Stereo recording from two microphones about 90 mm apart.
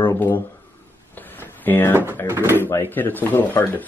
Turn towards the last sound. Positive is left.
turn(degrees=25)  # may be behind; listen again after turning